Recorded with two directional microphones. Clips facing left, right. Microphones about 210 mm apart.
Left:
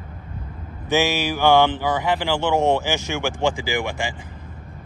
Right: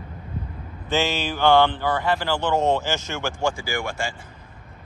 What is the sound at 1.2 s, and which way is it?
Speech, 10° left (ahead or behind).